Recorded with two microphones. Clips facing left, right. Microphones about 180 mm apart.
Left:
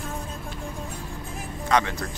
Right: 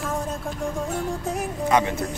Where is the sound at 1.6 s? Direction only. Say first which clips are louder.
Right 2 dB; 20° right (ahead or behind).